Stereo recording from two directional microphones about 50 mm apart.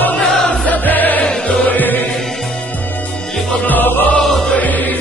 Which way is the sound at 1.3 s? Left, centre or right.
Centre.